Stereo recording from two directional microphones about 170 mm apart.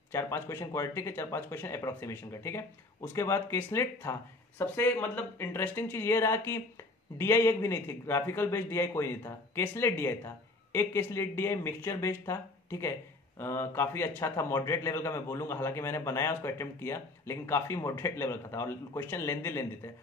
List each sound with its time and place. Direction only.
0.1 s speech: 15° left (ahead or behind)